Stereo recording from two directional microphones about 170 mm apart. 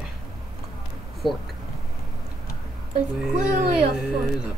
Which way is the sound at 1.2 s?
30° left (ahead or behind).